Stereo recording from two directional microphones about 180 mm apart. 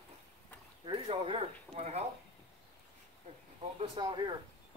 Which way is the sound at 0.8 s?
30° right (ahead or behind).